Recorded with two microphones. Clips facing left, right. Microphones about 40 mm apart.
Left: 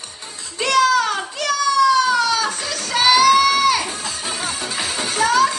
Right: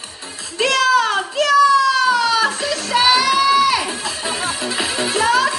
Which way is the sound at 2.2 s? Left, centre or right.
Right.